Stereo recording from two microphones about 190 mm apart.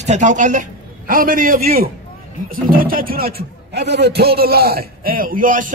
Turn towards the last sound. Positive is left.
turn(degrees=-45)  # may be behind; listen again after turning